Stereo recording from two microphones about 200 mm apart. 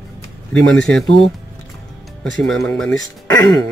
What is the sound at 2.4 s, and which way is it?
Speech, 5° left (ahead or behind).